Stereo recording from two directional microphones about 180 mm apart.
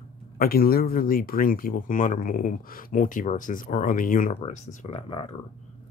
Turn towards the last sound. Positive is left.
turn(degrees=30)  # may be behind; listen again after turning